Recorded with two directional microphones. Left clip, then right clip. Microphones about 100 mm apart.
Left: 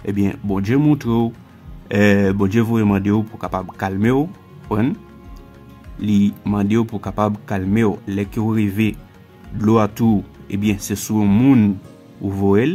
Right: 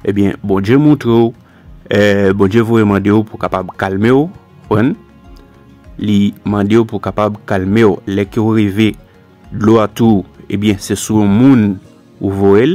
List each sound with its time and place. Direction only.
0.0 s speech: 35° right (ahead or behind)
5.9 s speech: 35° right (ahead or behind)
11.2 s speech: 20° right (ahead or behind)
12.2 s speech: 40° right (ahead or behind)